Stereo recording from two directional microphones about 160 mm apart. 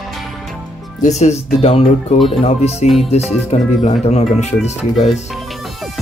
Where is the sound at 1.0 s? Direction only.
45° left (ahead or behind).